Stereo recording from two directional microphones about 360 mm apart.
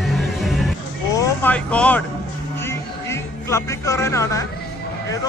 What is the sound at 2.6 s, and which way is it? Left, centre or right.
Music, centre.